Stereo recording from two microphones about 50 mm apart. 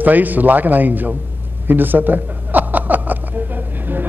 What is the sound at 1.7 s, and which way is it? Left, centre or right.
Chuckle, right.